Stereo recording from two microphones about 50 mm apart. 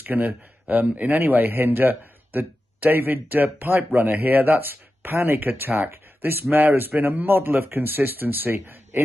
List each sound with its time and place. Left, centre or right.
0.0 s a man's voice: right